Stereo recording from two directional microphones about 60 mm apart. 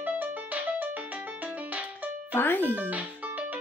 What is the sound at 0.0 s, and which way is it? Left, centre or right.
Music, right.